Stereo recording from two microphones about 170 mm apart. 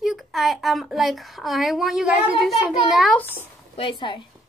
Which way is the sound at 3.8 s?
30° left (ahead or behind).